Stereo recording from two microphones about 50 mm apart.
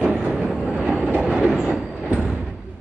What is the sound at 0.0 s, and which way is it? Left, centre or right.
Train, right.